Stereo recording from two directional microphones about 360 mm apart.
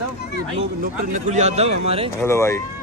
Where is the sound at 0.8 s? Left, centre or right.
Centre.